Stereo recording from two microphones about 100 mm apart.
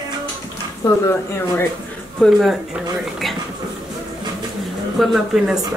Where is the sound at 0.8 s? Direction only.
25° left (ahead or behind).